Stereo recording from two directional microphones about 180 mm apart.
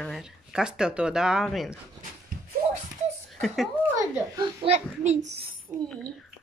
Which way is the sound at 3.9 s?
20° right (ahead or behind).